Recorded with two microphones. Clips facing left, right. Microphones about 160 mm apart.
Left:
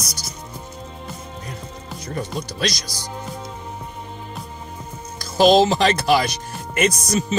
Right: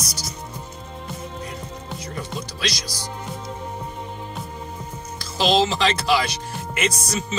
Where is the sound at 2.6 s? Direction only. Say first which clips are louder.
Left 5 dB; 45° left (ahead or behind).